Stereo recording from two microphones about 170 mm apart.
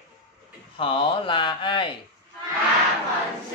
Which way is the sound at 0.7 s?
30° left (ahead or behind).